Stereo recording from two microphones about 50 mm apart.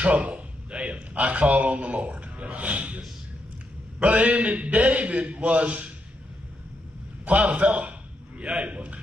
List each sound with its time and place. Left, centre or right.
0.0 s a man's voice: right
4.0 s a man's voice: right
7.2 s speech: right